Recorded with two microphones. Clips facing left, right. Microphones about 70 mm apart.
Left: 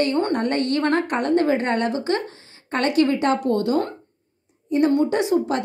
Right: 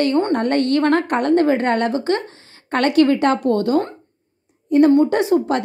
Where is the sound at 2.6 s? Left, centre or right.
Right.